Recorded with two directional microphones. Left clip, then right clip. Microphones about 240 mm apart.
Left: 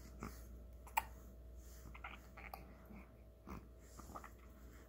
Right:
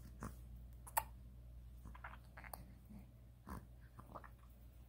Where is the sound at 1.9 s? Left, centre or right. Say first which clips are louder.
Left 2 dB; right.